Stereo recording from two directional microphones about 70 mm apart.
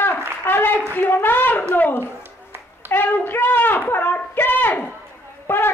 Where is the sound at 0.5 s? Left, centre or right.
Left.